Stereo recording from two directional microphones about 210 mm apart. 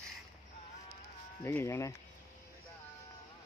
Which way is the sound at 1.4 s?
10° left (ahead or behind).